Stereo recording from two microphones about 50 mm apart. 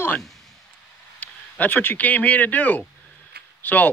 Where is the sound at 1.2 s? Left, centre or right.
Left.